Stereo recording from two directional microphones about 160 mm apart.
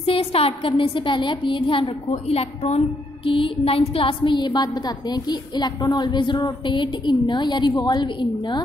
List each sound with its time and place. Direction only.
0.0 s a woman's voice: 35° left (ahead or behind)